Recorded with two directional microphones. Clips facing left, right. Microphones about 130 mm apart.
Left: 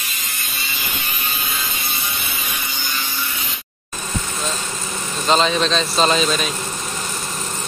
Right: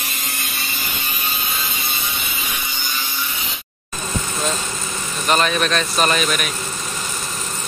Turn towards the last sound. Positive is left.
turn(degrees=25)  # may be behind; listen again after turning